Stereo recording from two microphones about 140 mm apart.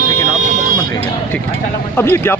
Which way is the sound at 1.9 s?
15° left (ahead or behind).